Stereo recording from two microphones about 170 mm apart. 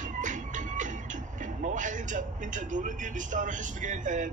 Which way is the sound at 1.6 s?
45° right (ahead or behind).